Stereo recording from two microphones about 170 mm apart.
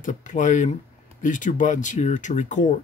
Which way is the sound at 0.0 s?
45° left (ahead or behind).